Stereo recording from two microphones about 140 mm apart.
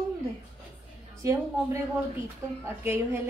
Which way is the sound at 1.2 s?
20° right (ahead or behind).